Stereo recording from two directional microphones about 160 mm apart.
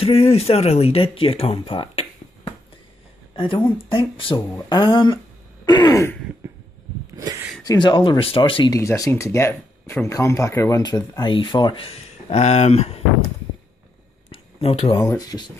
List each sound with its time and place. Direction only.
0.0 s speech: 40° left (ahead or behind)
3.3 s speech: 30° left (ahead or behind)
6.4 s a sound: 15° right (ahead or behind)
7.2 s speech: 20° right (ahead or behind)
7.6 s speech: 25° left (ahead or behind)
8.7 s speech: 20° left (ahead or behind); by 13.0 s 40° left (ahead or behind)
14.3 s a sound: 40° left (ahead or behind)
15.0 s speech: 20° left (ahead or behind)